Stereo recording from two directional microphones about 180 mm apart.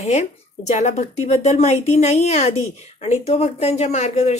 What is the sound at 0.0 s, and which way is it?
Speech, 40° left (ahead or behind).